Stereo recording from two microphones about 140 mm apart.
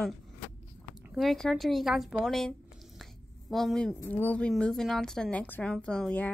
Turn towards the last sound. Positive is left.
turn(degrees=10)  # may be behind; listen again after turning